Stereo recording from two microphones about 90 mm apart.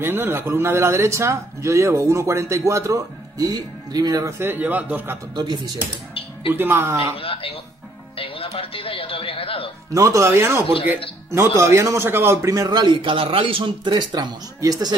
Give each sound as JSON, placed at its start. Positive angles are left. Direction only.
{"t": 0.0, "sound": "speech", "side_deg": -25}
{"t": 4.4, "sound": "a man's voice", "side_deg": -20}
{"t": 5.3, "sound": "a man's voice", "side_deg": -50}
{"t": 6.5, "sound": "a man's voice", "side_deg": -25}
{"t": 7.2, "sound": "speech", "side_deg": 90}
{"t": 9.9, "sound": "a man's voice", "side_deg": -35}